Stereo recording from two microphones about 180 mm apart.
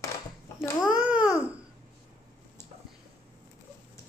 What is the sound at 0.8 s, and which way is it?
Speech, 5° right (ahead or behind).